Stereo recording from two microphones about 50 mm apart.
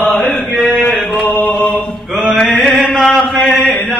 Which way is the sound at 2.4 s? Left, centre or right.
Centre.